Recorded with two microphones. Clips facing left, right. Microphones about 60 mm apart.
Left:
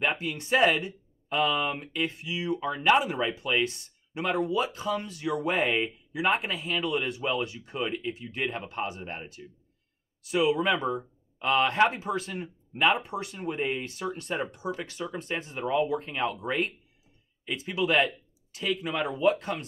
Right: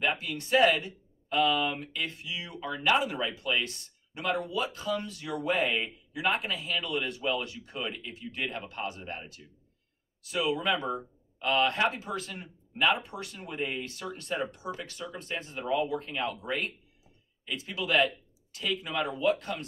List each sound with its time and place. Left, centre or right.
0.0 s speech: left